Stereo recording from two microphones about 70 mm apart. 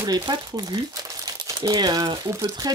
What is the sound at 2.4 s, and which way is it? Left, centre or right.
Speech, right.